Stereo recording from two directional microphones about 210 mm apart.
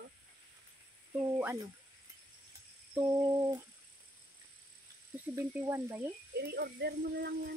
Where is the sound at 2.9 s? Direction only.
15° right (ahead or behind).